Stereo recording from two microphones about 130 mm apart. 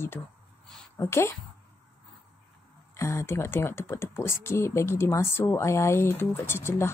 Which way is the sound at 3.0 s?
20° left (ahead or behind).